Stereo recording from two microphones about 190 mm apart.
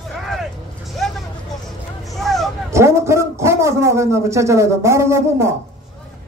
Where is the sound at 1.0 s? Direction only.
Centre (ahead or behind).